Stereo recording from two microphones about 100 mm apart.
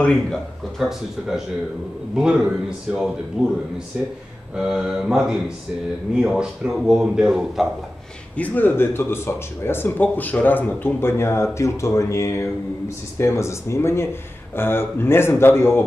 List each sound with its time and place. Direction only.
0.0 s a man's voice: 5° left (ahead or behind)
4.6 s a man's voice: 5° right (ahead or behind)
8.4 s speech: 20° left (ahead or behind)